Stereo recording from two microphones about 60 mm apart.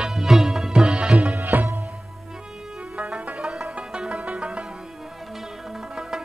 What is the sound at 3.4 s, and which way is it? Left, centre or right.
Music, centre.